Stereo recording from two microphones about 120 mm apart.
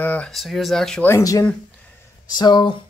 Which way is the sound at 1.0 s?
25° left (ahead or behind).